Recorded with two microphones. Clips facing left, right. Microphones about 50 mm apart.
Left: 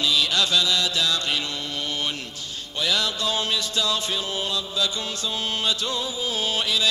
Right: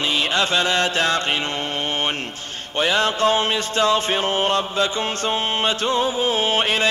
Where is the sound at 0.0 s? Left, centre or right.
Right.